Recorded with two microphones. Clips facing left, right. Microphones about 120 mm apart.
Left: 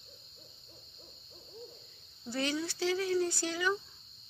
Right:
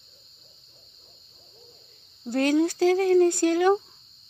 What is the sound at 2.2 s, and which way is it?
Speech, 50° right (ahead or behind).